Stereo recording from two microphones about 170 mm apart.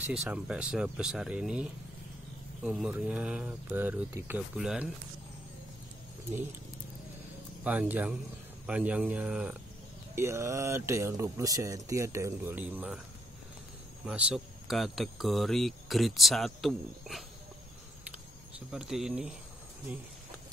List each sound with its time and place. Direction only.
0.0 s speech: 5° right (ahead or behind)
7.6 s speech: 10° right (ahead or behind)
10.1 s speech: 15° right (ahead or behind)
14.0 s speech: 5° right (ahead or behind)
18.7 s speech: 5° right (ahead or behind)